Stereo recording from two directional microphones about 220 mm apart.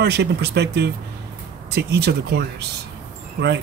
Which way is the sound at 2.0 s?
50° right (ahead or behind).